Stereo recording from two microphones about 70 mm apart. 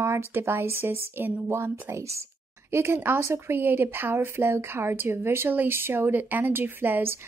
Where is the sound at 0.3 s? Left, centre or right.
Right.